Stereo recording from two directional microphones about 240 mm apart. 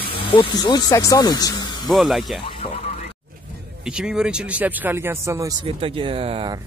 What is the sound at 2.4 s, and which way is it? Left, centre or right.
Speech, left.